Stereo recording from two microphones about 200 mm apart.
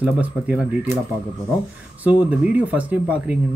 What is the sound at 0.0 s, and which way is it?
Speech, 5° right (ahead or behind).